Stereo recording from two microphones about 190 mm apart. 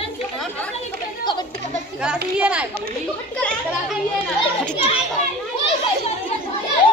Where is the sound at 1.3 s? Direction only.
25° left (ahead or behind).